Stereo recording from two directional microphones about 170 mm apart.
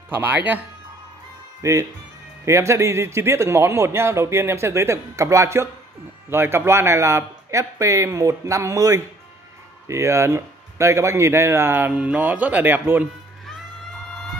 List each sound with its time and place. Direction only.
0.1 s a man's voice: 10° right (ahead or behind)